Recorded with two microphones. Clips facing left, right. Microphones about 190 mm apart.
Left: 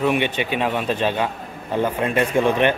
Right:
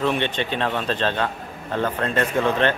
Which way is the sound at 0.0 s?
10° left (ahead or behind).